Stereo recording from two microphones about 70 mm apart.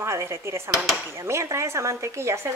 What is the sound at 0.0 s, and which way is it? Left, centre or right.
Speech, right.